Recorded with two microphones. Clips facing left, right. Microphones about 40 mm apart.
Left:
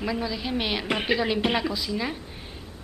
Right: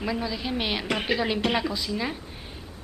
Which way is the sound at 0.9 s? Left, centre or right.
Centre.